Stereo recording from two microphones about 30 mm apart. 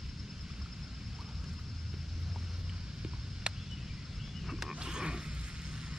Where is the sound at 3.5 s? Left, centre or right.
Right.